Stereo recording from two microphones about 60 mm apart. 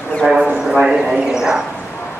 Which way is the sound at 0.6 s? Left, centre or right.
Centre.